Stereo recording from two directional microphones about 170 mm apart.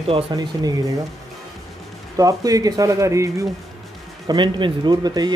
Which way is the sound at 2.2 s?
20° right (ahead or behind).